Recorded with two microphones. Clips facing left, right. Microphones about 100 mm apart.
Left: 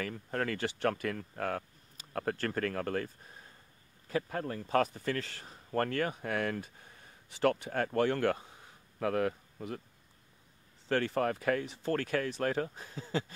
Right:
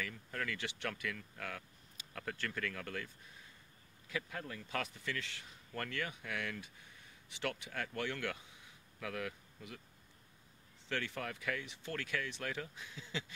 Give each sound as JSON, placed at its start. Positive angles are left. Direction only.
{"t": 0.0, "sound": "speech", "side_deg": 45}
{"t": 10.9, "sound": "speech", "side_deg": 40}